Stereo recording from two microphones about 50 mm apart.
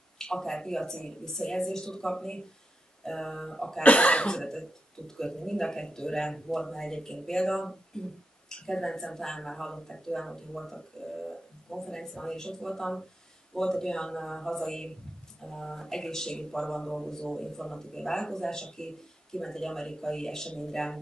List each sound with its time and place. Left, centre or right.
0.2 s speech: centre
3.8 s speech: left